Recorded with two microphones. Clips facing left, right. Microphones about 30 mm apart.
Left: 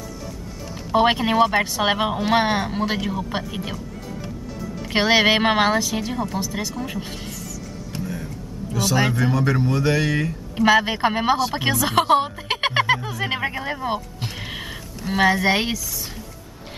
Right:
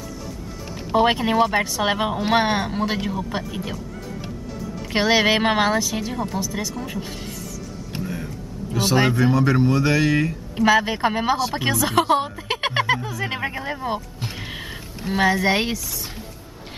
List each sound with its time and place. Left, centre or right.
0.9 s speech: centre
2.2 s speech: centre
4.9 s speech: centre
6.4 s speech: centre
6.7 s speech: centre
7.9 s vehicle: centre
8.7 s speech: right
9.1 s speech: centre
10.6 s speech: centre
15.0 s speech: centre